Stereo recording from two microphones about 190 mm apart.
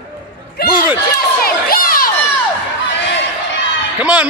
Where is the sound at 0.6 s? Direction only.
55° left (ahead or behind).